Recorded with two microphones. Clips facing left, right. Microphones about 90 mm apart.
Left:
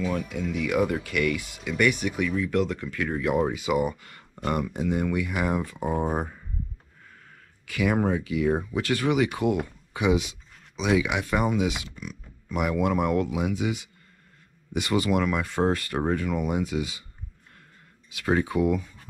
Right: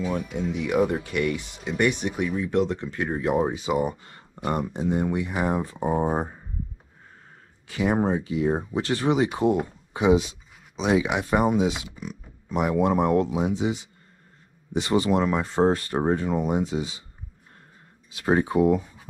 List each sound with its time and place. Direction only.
0.4 s speech: 30° right (ahead or behind)
7.7 s speech: 30° right (ahead or behind)
18.1 s speech: 30° right (ahead or behind)